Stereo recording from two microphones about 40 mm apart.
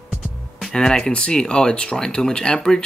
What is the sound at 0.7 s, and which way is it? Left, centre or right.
Speech, centre.